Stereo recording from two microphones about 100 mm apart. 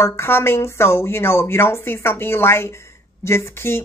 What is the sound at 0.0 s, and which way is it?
Speech, 25° left (ahead or behind).